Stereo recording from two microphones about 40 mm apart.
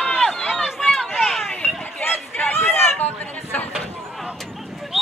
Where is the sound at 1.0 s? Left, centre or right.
Centre.